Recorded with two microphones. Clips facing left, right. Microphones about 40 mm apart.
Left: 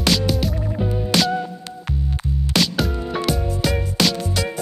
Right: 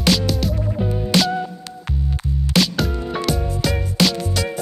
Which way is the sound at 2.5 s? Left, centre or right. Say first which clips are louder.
Right 1 dB; centre.